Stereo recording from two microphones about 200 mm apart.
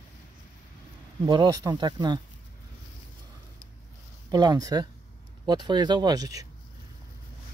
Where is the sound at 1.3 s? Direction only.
20° right (ahead or behind).